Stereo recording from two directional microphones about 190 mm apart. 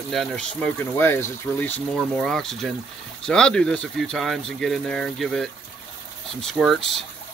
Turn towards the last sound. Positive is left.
turn(degrees=0)  # may be behind; listen again after turning